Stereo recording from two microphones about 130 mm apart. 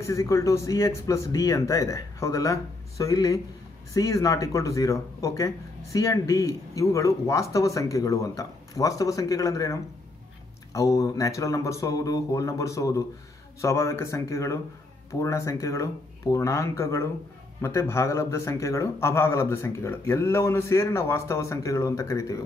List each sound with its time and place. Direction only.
0.0 s speech: 25° left (ahead or behind)